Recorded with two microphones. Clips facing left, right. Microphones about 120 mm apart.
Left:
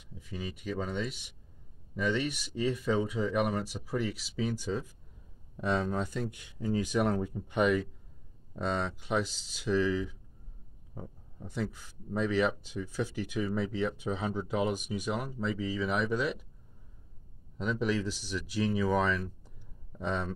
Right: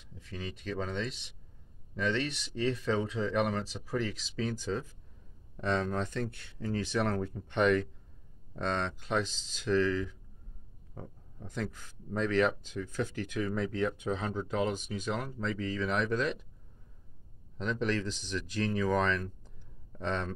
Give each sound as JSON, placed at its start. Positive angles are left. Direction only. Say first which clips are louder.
{"t": 0.0, "sound": "speech", "louder": "left 2 dB", "side_deg": 10}
{"t": 17.6, "sound": "speech", "louder": "left 1 dB", "side_deg": 10}